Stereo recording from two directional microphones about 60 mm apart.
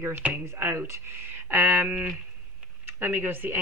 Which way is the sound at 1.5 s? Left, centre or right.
Right.